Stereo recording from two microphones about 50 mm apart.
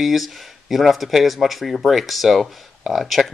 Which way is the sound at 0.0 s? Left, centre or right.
Centre.